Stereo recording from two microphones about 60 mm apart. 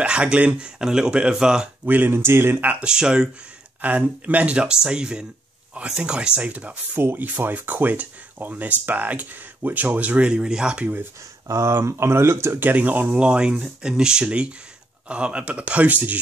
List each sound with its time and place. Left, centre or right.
0.0 s speech: centre
0.7 s speech: centre
1.9 s speech: right
2.1 s speech: right
2.6 s speech: right
2.9 s speech: centre
3.8 s speech: right
7.0 s speech: right; by 10.9 s centre
11.4 s speech: right
12.6 s speech: right